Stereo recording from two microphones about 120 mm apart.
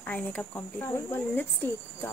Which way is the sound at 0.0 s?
10° left (ahead or behind).